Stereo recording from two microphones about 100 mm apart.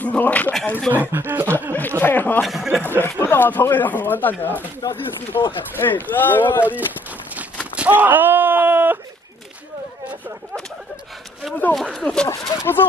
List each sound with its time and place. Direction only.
0.0 s speech: 15° left (ahead or behind)
0.9 s speech: 20° right (ahead or behind)
1.8 s speech: 20° left (ahead or behind)
2.4 s speech: 5° right (ahead or behind)
3.0 s speech: 20° left (ahead or behind)
5.3 s speech: 40° left (ahead or behind)
5.8 s speech: 20° left (ahead or behind)
7.7 s speech: 15° right (ahead or behind)
11.7 s speech: centre (ahead or behind)
12.3 s speech: 30° left (ahead or behind)